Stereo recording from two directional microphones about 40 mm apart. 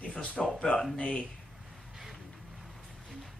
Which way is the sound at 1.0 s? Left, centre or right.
Left.